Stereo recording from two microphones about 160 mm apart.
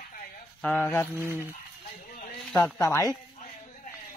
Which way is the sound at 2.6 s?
20° left (ahead or behind).